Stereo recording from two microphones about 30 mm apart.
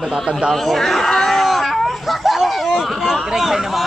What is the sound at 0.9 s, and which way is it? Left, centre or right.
Hubbub, centre.